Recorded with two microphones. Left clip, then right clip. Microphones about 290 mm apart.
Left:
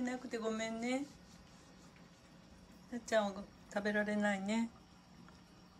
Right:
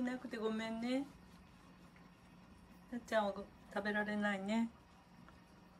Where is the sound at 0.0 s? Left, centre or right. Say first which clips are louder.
Left 1 dB; centre.